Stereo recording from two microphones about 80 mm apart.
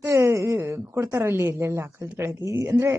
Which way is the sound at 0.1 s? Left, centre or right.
Right.